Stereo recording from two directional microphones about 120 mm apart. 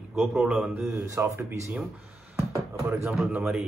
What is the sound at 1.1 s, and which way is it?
Speech, 25° right (ahead or behind).